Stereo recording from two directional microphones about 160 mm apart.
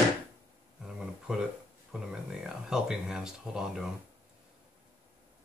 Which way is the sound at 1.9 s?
5° right (ahead or behind).